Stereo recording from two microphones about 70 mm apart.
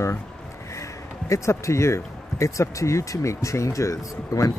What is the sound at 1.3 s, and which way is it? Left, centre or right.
Speech, left.